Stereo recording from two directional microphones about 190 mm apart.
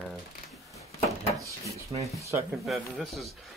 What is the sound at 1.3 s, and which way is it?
Speech, 15° right (ahead or behind).